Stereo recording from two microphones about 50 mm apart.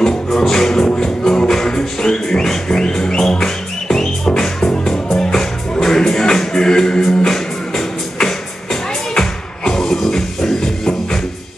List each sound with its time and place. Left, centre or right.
0.0 s music: centre